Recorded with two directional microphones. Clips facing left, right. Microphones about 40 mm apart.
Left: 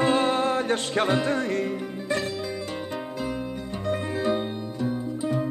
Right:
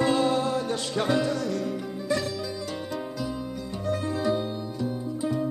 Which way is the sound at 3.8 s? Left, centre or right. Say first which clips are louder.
Left 1 dB; left.